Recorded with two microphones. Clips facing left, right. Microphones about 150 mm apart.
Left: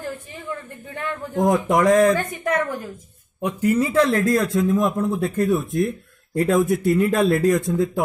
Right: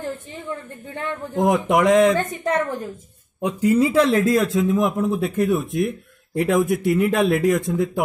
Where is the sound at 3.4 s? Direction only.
10° right (ahead or behind).